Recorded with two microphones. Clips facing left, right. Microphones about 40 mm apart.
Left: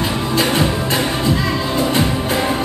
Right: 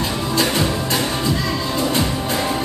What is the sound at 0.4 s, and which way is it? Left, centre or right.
Music, centre.